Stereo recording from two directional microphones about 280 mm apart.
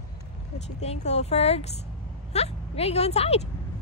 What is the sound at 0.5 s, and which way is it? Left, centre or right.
Speech, left.